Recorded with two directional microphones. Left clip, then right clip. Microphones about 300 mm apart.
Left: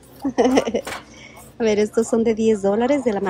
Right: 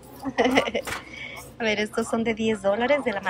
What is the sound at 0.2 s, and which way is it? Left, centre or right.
A woman's voice, centre.